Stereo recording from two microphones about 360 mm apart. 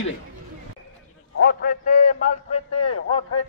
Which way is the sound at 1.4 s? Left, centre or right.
Left.